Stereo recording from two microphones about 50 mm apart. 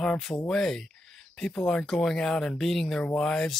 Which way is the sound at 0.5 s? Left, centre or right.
Centre.